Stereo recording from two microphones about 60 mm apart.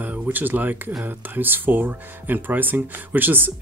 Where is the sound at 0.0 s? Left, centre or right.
Right.